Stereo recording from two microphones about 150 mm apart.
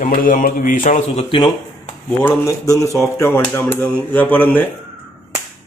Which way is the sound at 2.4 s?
20° left (ahead or behind).